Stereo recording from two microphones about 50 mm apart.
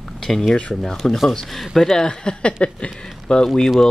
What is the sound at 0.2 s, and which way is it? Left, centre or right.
Speech, centre.